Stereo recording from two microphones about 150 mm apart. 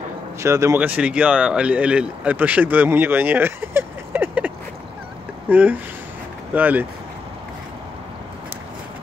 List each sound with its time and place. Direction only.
0.4 s speech: 20° right (ahead or behind)
0.7 s speech: 10° right (ahead or behind)
5.5 s speech: 10° right (ahead or behind)